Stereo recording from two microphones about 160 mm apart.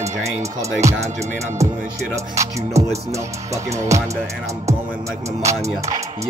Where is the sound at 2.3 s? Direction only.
20° right (ahead or behind).